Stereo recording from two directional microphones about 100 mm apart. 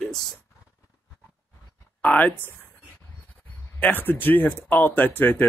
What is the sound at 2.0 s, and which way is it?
Speech, 15° left (ahead or behind).